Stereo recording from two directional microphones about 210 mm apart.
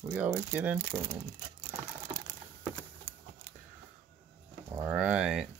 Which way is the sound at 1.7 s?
20° right (ahead or behind).